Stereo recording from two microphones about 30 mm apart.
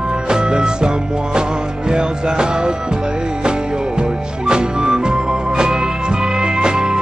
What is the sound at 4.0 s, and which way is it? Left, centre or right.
Music, right.